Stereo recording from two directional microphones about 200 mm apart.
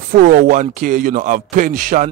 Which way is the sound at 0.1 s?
45° right (ahead or behind).